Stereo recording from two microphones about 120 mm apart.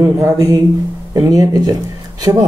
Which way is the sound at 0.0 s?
25° right (ahead or behind).